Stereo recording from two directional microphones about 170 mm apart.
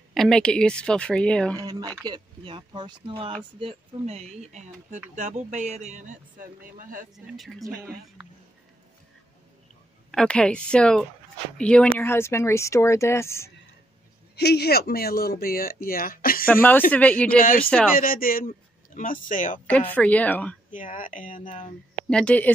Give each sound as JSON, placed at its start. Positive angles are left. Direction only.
{"t": 0.1, "sound": "speech", "side_deg": 5}
{"t": 1.6, "sound": "speech", "side_deg": -20}
{"t": 7.2, "sound": "speech", "side_deg": 0}
{"t": 8.2, "sound": "a sound", "side_deg": -5}
{"t": 10.1, "sound": "speech", "side_deg": 5}
{"t": 14.3, "sound": "speech", "side_deg": 75}
{"t": 16.9, "sound": "speech", "side_deg": 10}
{"t": 17.9, "sound": "speech", "side_deg": 55}
{"t": 19.6, "sound": "speech", "side_deg": 10}
{"t": 20.7, "sound": "speech", "side_deg": 50}
{"t": 22.1, "sound": "speech", "side_deg": 5}